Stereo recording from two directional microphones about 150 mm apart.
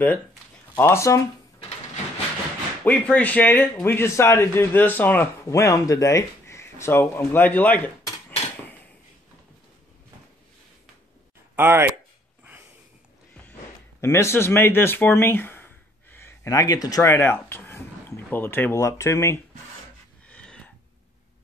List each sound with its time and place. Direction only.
0.7 s speech: 15° left (ahead or behind)
2.8 s a man's voice: 10° left (ahead or behind)
11.5 s speech: 15° right (ahead or behind)
14.0 s speech: 15° left (ahead or behind)
20.2 s a sound: 5° left (ahead or behind)